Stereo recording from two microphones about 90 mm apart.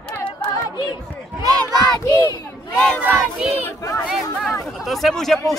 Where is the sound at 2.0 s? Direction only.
50° left (ahead or behind).